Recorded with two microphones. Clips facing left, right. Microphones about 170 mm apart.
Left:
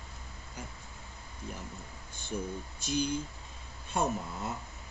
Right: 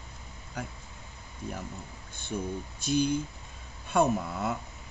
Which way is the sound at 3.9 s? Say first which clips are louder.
Right 6 dB; 70° right (ahead or behind).